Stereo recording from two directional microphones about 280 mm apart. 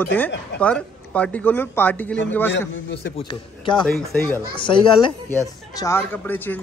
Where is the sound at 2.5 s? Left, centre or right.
Left.